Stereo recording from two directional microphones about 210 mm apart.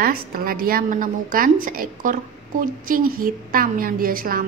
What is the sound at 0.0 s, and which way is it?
Speech, 45° right (ahead or behind).